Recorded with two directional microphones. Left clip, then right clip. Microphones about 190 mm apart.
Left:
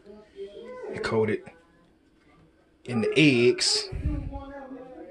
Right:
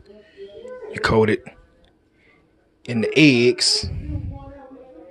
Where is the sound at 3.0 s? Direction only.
30° right (ahead or behind); by 4.3 s 5° right (ahead or behind).